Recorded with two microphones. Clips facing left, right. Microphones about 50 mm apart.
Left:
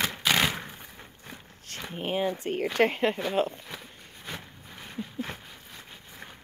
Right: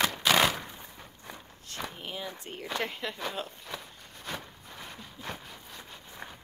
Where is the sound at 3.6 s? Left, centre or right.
Centre.